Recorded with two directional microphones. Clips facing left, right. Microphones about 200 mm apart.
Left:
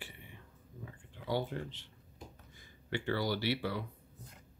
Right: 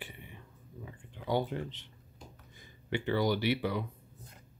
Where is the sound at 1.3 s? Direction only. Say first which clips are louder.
Right 4 dB; 20° right (ahead or behind).